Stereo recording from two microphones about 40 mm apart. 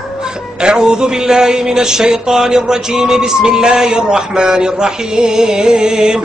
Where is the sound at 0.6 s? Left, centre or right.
Right.